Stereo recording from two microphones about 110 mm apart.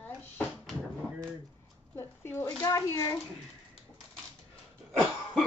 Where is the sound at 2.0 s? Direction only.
20° left (ahead or behind).